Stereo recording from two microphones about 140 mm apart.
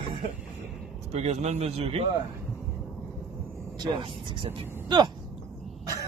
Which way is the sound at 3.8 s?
35° right (ahead or behind).